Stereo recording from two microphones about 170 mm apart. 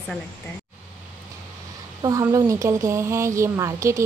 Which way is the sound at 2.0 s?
20° right (ahead or behind).